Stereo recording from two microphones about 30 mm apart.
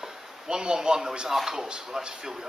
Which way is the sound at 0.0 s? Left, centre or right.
Right.